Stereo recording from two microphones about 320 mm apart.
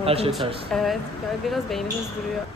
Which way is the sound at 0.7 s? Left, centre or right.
Centre.